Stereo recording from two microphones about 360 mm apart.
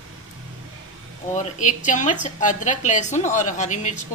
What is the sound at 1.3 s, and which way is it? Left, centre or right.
A woman's voice, centre.